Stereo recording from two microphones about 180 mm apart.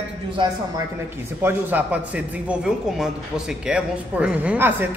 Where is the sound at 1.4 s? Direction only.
10° right (ahead or behind).